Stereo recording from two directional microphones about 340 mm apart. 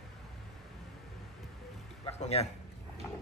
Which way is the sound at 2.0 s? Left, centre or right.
Centre.